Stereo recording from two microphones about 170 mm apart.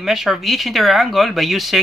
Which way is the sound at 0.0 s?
Centre (ahead or behind).